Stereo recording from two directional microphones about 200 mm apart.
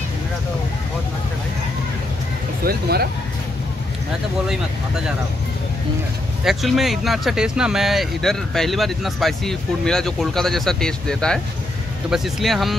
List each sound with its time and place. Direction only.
2.6 s speech: 50° right (ahead or behind)
6.4 s speech: centre (ahead or behind)